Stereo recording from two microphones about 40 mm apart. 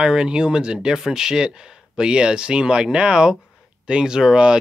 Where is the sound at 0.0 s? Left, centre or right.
Right.